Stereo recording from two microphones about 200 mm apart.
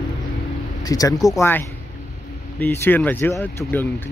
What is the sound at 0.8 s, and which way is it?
Speech, 20° left (ahead or behind).